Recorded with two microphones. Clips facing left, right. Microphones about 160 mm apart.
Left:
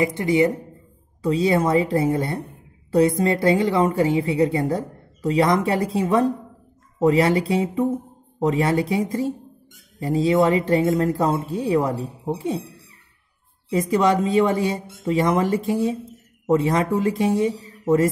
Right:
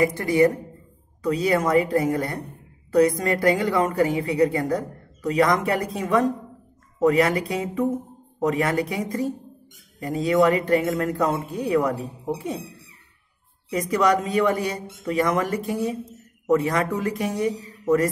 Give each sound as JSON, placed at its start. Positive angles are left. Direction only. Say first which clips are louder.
{"t": 0.0, "sound": "a woman's voice", "louder": "even", "side_deg": 25}
{"t": 13.7, "sound": "a woman's voice", "louder": "left 2 dB", "side_deg": 30}